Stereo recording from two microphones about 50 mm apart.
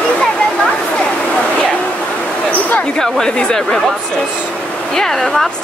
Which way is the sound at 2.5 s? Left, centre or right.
Left.